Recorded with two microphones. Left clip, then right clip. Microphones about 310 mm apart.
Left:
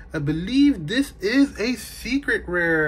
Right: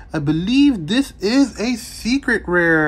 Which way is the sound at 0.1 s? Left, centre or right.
Centre.